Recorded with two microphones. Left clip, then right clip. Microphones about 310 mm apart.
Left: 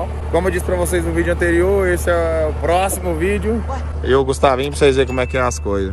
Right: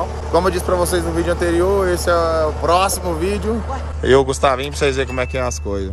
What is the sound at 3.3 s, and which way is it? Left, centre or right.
Speech, right.